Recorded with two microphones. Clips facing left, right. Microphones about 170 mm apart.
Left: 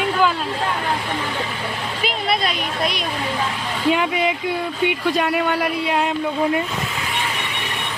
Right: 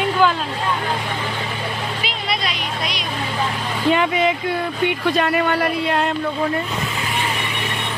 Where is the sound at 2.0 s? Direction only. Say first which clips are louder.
Left 8 dB; 50° left (ahead or behind).